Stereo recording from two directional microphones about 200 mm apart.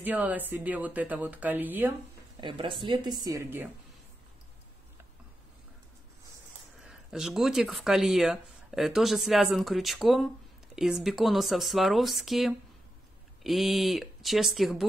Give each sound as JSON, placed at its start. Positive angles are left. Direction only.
{"t": 0.0, "sound": "speech", "side_deg": -10}
{"t": 2.4, "sound": "a woman's voice", "side_deg": -25}
{"t": 6.8, "sound": "speech", "side_deg": 0}